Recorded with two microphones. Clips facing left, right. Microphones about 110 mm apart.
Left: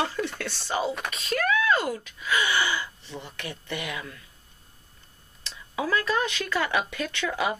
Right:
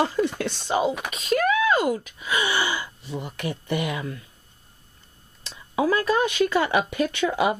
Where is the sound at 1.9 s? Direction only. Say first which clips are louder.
Right 1 dB; 15° right (ahead or behind).